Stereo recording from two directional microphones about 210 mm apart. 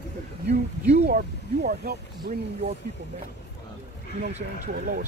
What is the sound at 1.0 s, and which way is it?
Speech, 45° right (ahead or behind).